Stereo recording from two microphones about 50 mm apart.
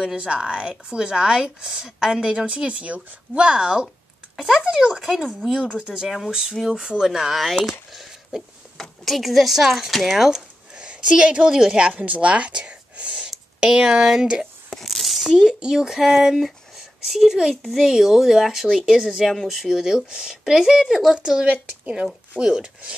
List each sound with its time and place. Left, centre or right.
0.0 s speech: centre
4.4 s speech: centre
6.0 s speech: centre
6.7 s speech: centre
9.0 s speech: centre
10.8 s a woman's voice: centre
12.0 s speech: right
14.7 s a sound: centre
15.3 s speech: centre